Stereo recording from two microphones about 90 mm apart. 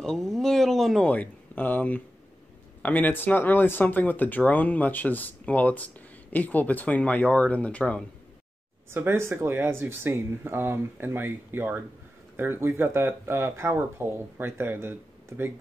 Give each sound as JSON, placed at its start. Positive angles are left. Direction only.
{"t": 0.0, "sound": "a sound", "side_deg": 5}
{"t": 1.0, "sound": "speech", "side_deg": 15}
{"t": 8.9, "sound": "speech", "side_deg": -30}